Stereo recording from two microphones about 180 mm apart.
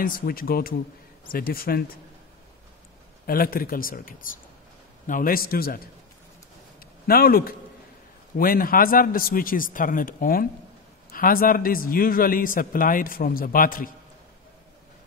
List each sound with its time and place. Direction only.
0.0 s a man's voice: 55° left (ahead or behind)
3.3 s a man's voice: 55° left (ahead or behind)
6.8 s a sound: 55° left (ahead or behind)
8.4 s a man's voice: 55° left (ahead or behind)